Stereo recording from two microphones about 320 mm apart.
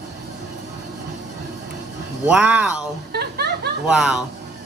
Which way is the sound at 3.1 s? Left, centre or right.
Right.